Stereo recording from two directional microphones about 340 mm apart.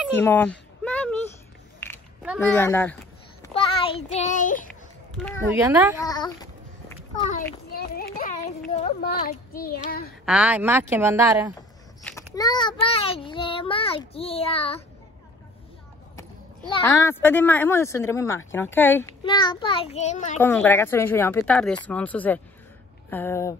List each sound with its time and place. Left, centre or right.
0.0 s a sound: centre
3.4 s a child's voice: centre
5.1 s speech: centre
6.0 s a child's voice: centre; by 10.1 s left
10.2 s speech: centre
12.0 s a child's voice: centre
16.2 s a child's voice: centre
20.3 s a child's voice: centre